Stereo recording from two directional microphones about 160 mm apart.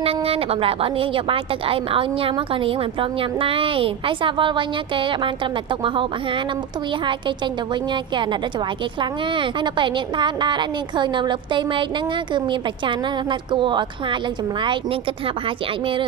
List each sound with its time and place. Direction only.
0.0 s a woman's voice: 35° right (ahead or behind)